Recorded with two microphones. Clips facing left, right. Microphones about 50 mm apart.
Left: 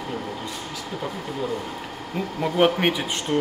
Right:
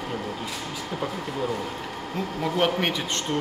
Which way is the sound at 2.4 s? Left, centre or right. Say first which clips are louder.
Left 4 dB; centre.